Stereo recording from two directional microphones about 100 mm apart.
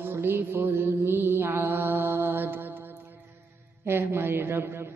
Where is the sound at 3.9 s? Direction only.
25° right (ahead or behind).